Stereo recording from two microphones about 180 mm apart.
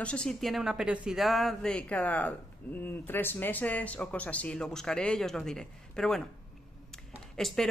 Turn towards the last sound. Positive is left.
turn(degrees=5)  # may be behind; listen again after turning